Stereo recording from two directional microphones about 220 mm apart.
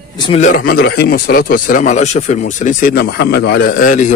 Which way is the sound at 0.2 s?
30° left (ahead or behind).